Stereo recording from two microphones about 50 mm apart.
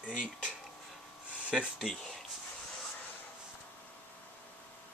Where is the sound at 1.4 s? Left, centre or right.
Centre.